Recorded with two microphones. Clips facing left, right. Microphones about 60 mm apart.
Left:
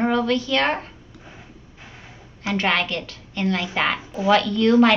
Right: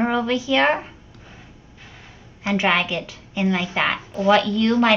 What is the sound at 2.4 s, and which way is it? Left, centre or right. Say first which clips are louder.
Speech: right 2 dB; centre.